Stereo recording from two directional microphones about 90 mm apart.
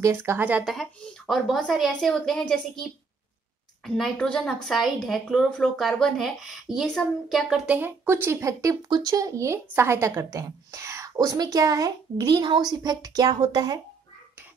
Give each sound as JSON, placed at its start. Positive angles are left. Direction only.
{"t": 0.0, "sound": "speech", "side_deg": -25}
{"t": 0.7, "sound": "speech", "side_deg": 0}
{"t": 3.8, "sound": "speech", "side_deg": 5}
{"t": 7.6, "sound": "a woman's voice", "side_deg": -20}
{"t": 11.1, "sound": "a woman's voice", "side_deg": -45}